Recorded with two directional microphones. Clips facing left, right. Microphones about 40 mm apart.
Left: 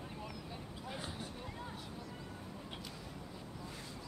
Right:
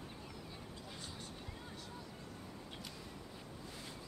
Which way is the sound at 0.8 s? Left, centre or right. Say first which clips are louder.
Left 9 dB; left.